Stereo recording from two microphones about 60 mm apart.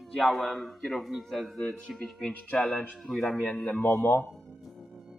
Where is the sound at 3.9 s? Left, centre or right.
Left.